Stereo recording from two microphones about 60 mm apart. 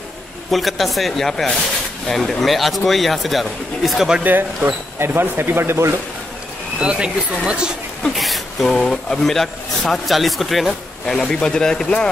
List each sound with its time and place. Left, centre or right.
0.5 s speech: centre
4.2 s speech: right
4.9 s speech: right
6.8 s speech: centre
8.0 s a sound: centre
8.8 s speech: centre